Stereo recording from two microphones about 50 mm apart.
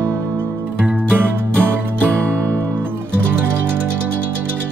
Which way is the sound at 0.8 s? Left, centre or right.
Right.